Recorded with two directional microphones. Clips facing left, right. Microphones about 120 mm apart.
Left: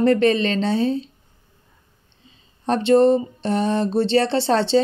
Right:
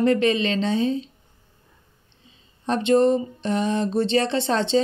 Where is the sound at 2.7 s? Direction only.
35° left (ahead or behind).